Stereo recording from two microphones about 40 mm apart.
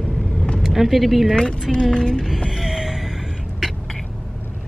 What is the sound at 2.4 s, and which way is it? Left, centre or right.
Music, centre.